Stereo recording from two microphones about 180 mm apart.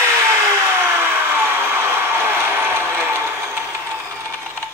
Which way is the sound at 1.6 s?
15° right (ahead or behind).